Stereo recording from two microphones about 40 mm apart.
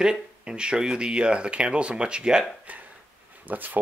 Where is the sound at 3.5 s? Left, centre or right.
Right.